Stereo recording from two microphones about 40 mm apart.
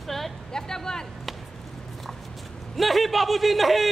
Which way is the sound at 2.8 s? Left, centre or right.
Centre.